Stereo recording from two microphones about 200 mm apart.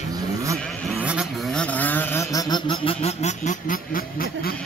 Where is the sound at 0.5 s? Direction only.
Centre (ahead or behind); by 4.2 s 45° left (ahead or behind).